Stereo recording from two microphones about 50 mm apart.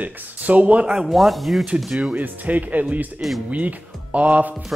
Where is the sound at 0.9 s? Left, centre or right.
Centre.